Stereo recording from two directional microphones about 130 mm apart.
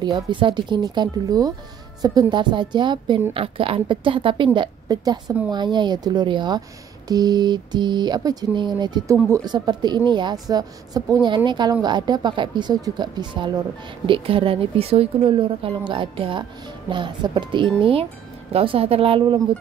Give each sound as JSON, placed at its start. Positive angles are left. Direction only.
{"t": 0.0, "sound": "a woman's voice", "side_deg": -35}